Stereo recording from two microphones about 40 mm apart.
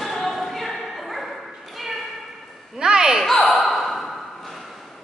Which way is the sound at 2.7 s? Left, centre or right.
Centre.